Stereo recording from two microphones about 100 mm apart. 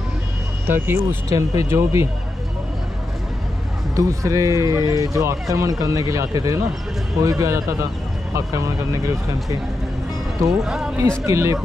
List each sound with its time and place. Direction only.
0.7 s speech: 20° right (ahead or behind)
1.3 s speech: 35° right (ahead or behind)
3.9 s speech: 35° right (ahead or behind)
10.6 s speech: 5° right (ahead or behind)
11.0 s speech: 30° right (ahead or behind)